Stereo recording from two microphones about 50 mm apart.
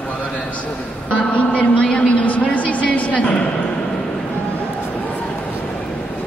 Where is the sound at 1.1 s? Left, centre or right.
Left.